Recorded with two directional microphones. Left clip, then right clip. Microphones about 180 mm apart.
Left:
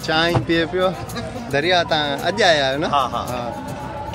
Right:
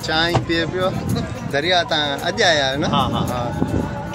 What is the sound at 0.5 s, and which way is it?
Speech, 25° left (ahead or behind).